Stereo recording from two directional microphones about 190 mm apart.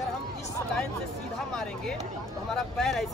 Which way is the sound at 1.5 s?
5° left (ahead or behind).